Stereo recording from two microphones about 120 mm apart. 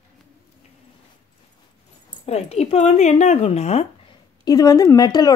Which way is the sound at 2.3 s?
60° left (ahead or behind).